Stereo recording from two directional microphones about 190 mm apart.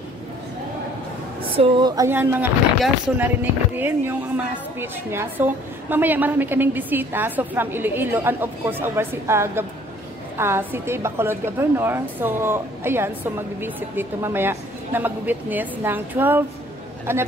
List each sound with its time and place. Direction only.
1.5 s speech: 25° right (ahead or behind)